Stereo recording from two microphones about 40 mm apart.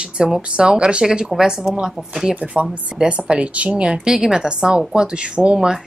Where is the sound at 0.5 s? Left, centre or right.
Right.